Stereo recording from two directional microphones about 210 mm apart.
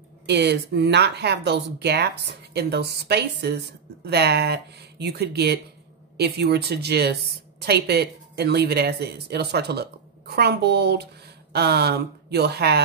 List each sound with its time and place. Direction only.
0.3 s speech: 55° right (ahead or behind)